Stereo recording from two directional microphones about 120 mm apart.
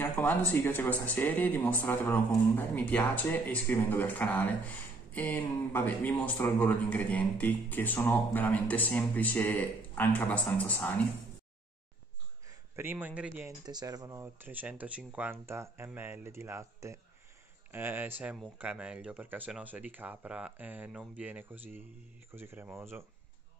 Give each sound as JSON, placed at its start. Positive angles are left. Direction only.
{"t": 0.0, "sound": "speech", "side_deg": 15}
{"t": 12.4, "sound": "speech", "side_deg": -20}
{"t": 13.7, "sound": "speech", "side_deg": -35}